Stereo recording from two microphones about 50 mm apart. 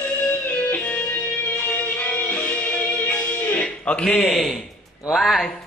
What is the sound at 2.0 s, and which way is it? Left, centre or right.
Music, left.